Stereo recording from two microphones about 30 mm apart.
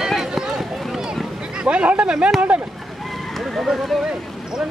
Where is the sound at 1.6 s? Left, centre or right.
Right.